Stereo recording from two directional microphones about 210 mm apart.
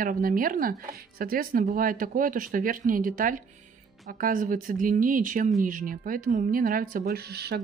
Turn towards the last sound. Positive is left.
turn(degrees=-50)  # may be behind; listen again after turning